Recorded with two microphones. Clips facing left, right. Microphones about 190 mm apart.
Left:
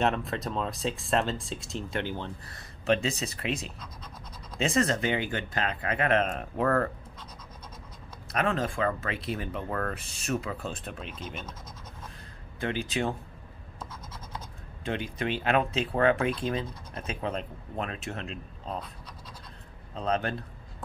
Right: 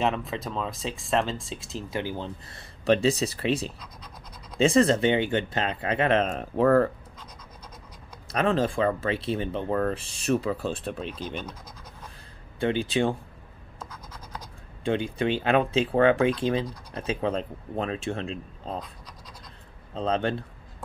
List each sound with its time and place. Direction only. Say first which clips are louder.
0.0 s speech: right 1 dB; centre (ahead or behind); by 2.6 s 20° right (ahead or behind)
2.8 s speech: right 5 dB; 35° right (ahead or behind)
8.3 s speech: right 4 dB; 30° right (ahead or behind)
12.5 s speech: right 6 dB; 30° right (ahead or behind)
14.9 s speech: right 6 dB; 30° right (ahead or behind)
19.9 s speech: right 3 dB; 30° right (ahead or behind)